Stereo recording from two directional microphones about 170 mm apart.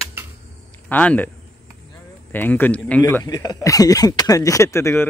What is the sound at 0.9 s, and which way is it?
Speech, 10° left (ahead or behind).